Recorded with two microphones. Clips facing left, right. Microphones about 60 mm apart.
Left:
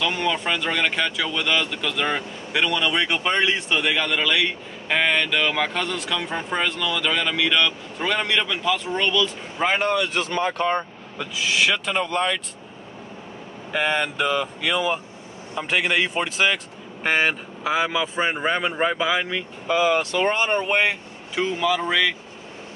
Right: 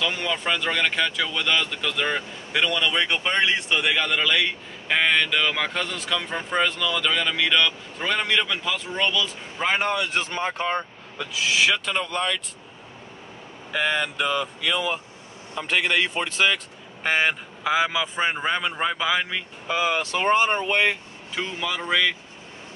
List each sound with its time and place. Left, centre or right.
0.0 s speech: centre
10.1 s speech: centre
10.7 s speech: centre
11.5 s speech: centre
11.8 s speech: centre
13.7 s speech: centre
20.6 s speech: centre